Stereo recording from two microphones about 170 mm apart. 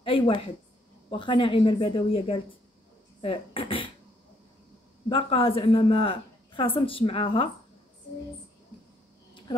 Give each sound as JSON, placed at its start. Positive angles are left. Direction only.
{"t": 0.0, "sound": "a sound", "side_deg": 30}
{"t": 1.1, "sound": "a woman's voice", "side_deg": 30}
{"t": 5.1, "sound": "a woman's voice", "side_deg": 30}